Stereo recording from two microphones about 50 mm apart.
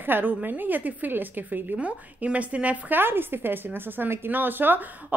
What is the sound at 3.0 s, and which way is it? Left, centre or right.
A woman's voice, right.